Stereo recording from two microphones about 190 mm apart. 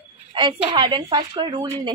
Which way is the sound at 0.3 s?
25° right (ahead or behind).